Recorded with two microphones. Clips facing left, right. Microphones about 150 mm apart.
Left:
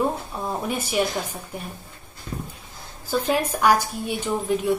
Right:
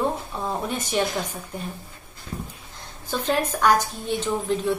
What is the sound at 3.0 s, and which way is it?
A woman's voice, 10° left (ahead or behind).